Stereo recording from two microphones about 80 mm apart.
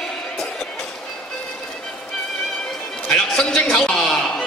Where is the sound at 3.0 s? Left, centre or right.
Centre.